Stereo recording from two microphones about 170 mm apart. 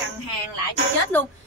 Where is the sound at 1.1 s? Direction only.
10° left (ahead or behind).